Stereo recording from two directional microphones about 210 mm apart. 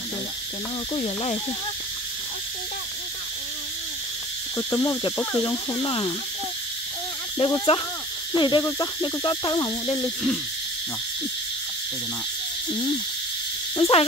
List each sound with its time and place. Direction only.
0.9 s speech: 30° left (ahead or behind)
4.6 s speech: 15° left (ahead or behind)
7.3 s speech: 25° left (ahead or behind)
13.7 s speech: 25° left (ahead or behind)